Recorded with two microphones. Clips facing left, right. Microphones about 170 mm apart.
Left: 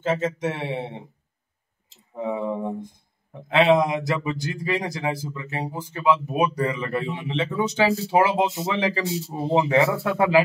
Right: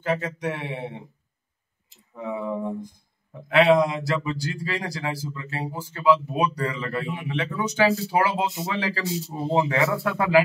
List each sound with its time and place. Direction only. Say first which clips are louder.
0.0 s speech: left 2 dB; 20° left (ahead or behind)
2.1 s speech: left 2 dB; 25° left (ahead or behind)